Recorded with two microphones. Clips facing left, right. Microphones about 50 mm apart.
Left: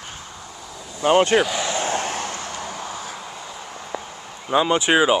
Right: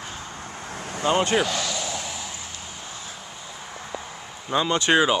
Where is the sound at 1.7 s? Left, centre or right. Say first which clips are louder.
Left 7 dB; left.